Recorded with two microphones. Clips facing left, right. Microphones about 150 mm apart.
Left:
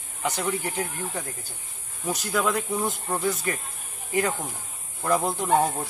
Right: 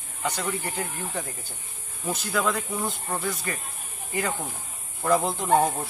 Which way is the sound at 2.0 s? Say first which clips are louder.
Left 1 dB; 10° left (ahead or behind).